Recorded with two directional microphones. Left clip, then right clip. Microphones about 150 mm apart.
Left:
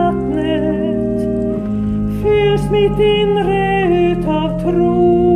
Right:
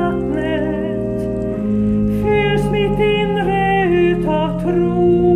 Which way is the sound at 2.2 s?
45° left (ahead or behind).